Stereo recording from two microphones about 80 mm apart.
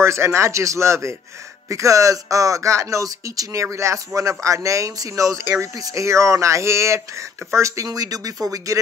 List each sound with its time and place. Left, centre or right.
0.0 s speech: right